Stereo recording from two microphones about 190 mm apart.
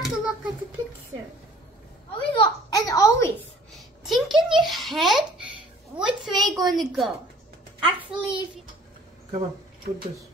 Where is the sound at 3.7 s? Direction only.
Centre (ahead or behind).